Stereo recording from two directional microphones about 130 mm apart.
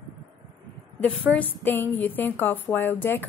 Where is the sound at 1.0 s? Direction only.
10° left (ahead or behind).